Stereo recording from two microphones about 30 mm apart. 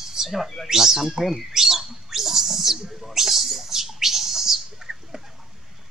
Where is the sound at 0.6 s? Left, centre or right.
Centre.